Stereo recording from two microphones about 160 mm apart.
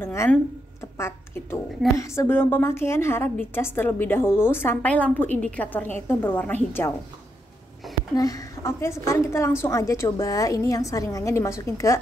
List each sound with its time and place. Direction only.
0.0 s a woman's voice: 15° left (ahead or behind)
7.9 s a sound: centre (ahead or behind)
8.2 s a woman's voice: 20° left (ahead or behind)